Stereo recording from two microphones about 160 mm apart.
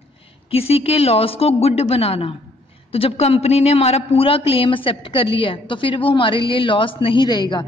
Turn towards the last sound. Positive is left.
turn(degrees=30)  # may be behind; listen again after turning